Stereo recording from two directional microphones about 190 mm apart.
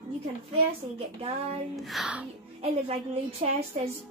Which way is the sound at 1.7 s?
Centre (ahead or behind).